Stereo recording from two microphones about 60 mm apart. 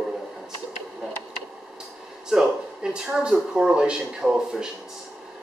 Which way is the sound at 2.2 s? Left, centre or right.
Centre.